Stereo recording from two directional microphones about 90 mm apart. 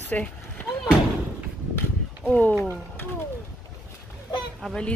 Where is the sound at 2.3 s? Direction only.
15° left (ahead or behind).